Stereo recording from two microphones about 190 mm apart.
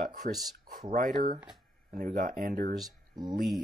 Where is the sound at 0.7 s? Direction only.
45° right (ahead or behind).